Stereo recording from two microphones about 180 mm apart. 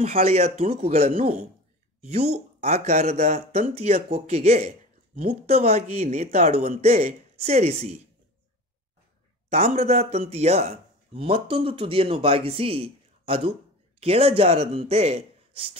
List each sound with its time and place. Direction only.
0.0 s speech: 35° right (ahead or behind)
9.5 s speech: 35° right (ahead or behind)